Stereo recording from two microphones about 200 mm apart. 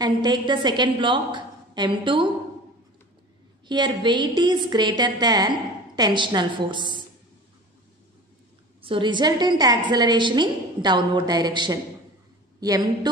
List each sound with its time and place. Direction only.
0.0 s a woman's voice: 20° right (ahead or behind)
3.6 s a woman's voice: 20° right (ahead or behind)
8.8 s a woman's voice: 25° right (ahead or behind)